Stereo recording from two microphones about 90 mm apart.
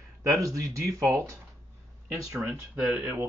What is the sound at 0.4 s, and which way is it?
Speech, 35° right (ahead or behind).